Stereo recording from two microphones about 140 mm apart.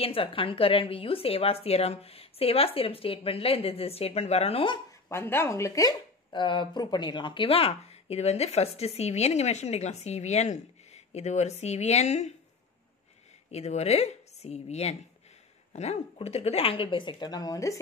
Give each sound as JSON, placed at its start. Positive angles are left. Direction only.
{"t": 0.0, "sound": "speech", "side_deg": 40}
{"t": 5.0, "sound": "speech", "side_deg": 15}
{"t": 13.5, "sound": "a woman's voice", "side_deg": 50}